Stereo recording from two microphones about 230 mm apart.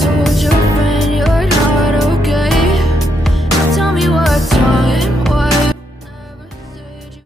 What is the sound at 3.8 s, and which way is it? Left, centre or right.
Music, centre.